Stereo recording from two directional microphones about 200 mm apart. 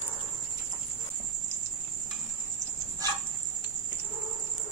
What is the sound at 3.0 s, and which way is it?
Dog, 20° right (ahead or behind).